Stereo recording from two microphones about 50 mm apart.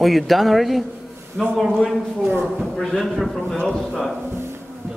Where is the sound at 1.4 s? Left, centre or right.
Centre.